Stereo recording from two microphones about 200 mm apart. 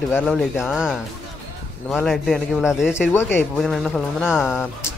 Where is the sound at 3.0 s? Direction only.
10° left (ahead or behind).